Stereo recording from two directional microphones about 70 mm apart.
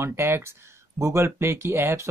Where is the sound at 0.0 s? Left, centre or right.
Right.